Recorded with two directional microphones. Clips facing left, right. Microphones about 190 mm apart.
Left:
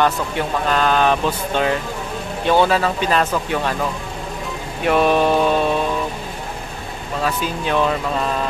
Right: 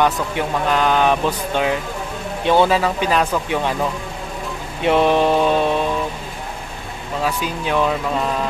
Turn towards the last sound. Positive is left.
turn(degrees=-10)  # may be behind; listen again after turning